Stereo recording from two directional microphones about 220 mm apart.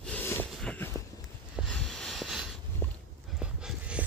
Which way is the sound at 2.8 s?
10° left (ahead or behind).